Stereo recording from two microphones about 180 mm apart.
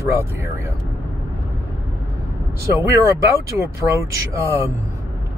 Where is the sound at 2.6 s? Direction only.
15° right (ahead or behind).